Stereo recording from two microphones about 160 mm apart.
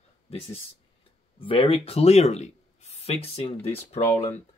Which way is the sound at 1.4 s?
35° left (ahead or behind).